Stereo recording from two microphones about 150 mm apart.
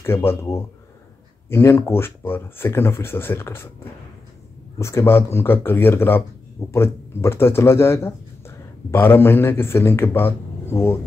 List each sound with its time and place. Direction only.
0.0 s speech: 15° left (ahead or behind)
4.7 s speech: 20° left (ahead or behind)